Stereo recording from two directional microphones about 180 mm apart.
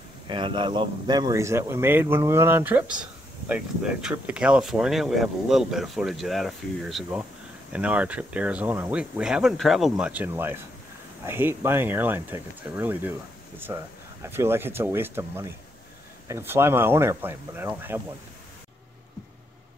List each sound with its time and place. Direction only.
0.3 s speech: 25° right (ahead or behind)